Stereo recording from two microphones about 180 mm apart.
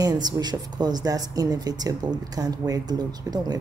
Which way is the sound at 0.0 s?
25° right (ahead or behind).